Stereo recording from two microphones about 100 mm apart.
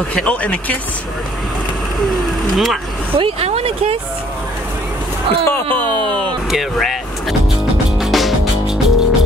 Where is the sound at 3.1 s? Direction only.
80° right.